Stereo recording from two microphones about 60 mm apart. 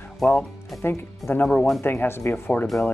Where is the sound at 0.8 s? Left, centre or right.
Left.